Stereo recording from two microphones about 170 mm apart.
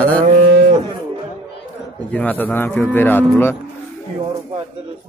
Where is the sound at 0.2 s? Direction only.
50° right (ahead or behind).